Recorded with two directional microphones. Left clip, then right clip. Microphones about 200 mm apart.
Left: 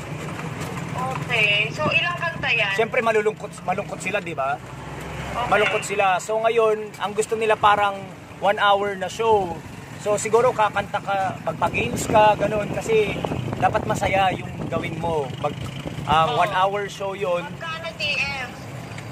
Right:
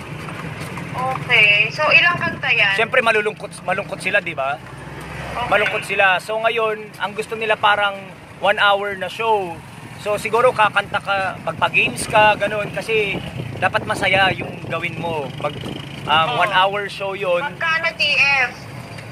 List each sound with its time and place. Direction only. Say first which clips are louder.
1.3 s clip-clop: right 7 dB; centre (ahead or behind)
1.8 s speech: right 8 dB; 20° right (ahead or behind)
2.4 s speech: right 5 dB; centre (ahead or behind); by 7.9 s 15° left (ahead or behind)
8.4 s speech: right 3 dB; 5° left (ahead or behind)
17.7 s vehicle: right 11 dB; 20° right (ahead or behind)
18.1 s speech: right 12 dB; 15° right (ahead or behind)